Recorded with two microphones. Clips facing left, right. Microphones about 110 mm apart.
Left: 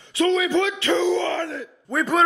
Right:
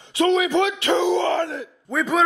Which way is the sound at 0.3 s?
20° right (ahead or behind).